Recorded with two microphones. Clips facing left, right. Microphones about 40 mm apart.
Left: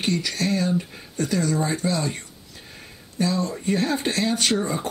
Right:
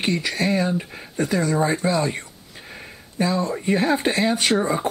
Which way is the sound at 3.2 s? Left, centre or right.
Centre.